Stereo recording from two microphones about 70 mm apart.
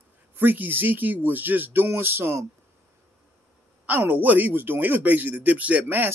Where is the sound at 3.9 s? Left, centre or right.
Right.